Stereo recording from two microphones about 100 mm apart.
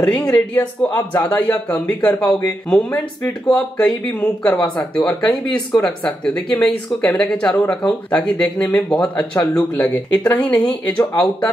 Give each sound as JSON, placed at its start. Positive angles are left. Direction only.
{"t": 0.0, "sound": "speech", "side_deg": 15}